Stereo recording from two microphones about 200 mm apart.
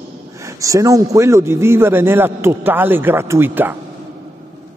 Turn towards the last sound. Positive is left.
turn(degrees=-10)  # may be behind; listen again after turning